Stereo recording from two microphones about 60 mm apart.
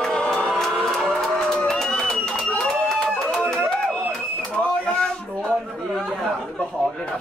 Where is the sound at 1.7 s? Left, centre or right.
Centre.